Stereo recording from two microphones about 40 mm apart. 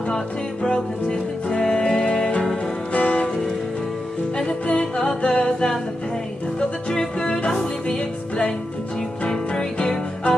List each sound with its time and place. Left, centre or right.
0.1 s music: left
2.9 s music: left
4.4 s music: left
6.9 s music: centre